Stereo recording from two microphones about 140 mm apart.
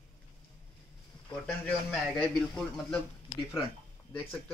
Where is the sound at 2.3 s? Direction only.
5° left (ahead or behind).